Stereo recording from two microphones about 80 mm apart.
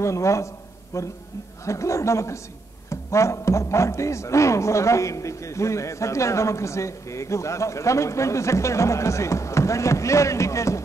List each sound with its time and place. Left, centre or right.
0.0 s a man's voice: left